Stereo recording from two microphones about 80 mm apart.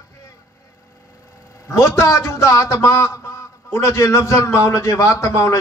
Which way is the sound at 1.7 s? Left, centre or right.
Left.